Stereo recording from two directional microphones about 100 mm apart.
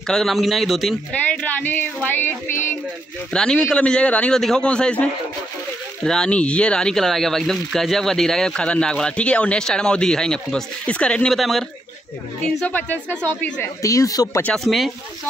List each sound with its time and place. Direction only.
0.1 s a man's voice: centre (ahead or behind)
1.4 s speech: 20° left (ahead or behind)
2.1 s child singing: 20° left (ahead or behind)
3.3 s speech: 10° left (ahead or behind)
13.8 s speech: 35° left (ahead or behind)
14.4 s a man's voice: 5° left (ahead or behind)